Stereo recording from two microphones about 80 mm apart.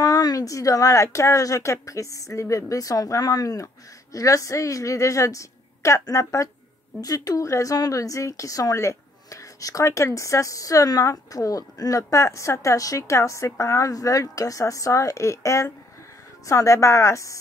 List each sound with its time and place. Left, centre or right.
0.0 s a woman's voice: left